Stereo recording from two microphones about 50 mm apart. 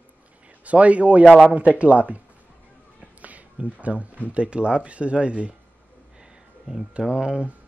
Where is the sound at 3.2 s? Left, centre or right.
Right.